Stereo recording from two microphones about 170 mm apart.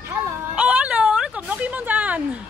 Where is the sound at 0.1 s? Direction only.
5° right (ahead or behind).